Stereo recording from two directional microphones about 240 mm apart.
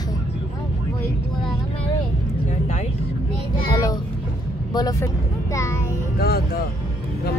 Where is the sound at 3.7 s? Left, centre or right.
Centre.